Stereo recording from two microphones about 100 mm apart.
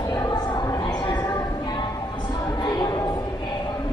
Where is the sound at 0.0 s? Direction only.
40° left (ahead or behind).